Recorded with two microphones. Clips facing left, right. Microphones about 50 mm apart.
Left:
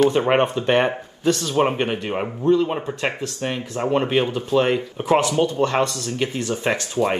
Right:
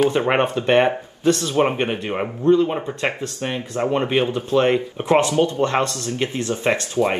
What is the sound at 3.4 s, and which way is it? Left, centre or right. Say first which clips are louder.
Speech: right 1 dB; right.